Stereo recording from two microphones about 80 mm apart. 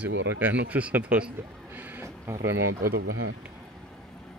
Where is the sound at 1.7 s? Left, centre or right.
Right.